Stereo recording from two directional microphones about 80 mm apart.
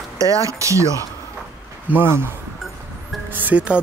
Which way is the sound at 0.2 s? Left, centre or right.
Right.